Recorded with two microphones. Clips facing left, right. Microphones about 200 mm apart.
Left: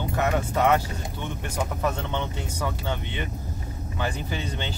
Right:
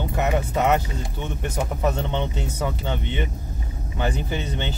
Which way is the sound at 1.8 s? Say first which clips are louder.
Right 5 dB; 20° right (ahead or behind).